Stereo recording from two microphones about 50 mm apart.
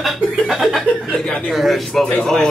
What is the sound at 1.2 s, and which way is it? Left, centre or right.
Speech, left.